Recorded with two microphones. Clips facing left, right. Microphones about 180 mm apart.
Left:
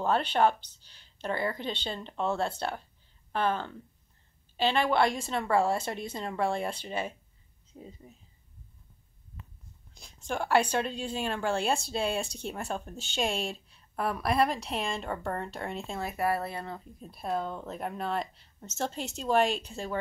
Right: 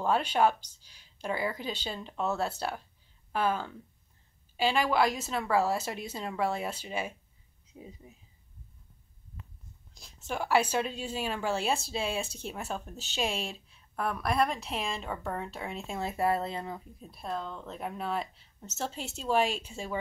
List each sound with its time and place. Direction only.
0.0 s speech: 10° right (ahead or behind)
9.9 s speech: 5° right (ahead or behind)
16.0 s speech: 25° right (ahead or behind)
17.0 s speech: centre (ahead or behind)